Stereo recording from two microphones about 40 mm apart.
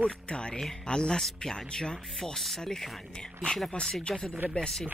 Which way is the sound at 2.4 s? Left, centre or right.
Centre.